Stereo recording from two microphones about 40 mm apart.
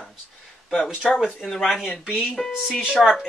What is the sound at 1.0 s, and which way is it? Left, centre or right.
Speech, centre.